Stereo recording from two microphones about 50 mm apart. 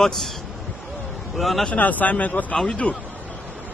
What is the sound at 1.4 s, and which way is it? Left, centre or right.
Speech, centre.